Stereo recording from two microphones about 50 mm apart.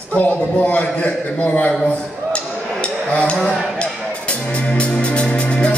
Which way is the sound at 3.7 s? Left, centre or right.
Left.